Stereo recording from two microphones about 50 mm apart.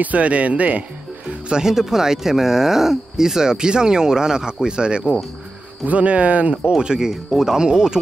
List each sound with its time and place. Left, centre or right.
0.0 s speech: right
1.5 s speech: centre; by 6.5 s right
6.5 s speech: centre